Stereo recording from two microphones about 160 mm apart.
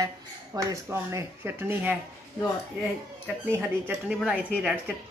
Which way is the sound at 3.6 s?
5° right (ahead or behind).